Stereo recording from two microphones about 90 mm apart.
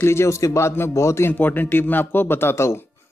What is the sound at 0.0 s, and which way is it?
Speech, 30° left (ahead or behind).